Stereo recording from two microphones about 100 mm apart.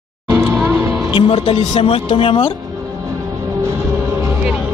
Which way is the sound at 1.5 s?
65° left (ahead or behind).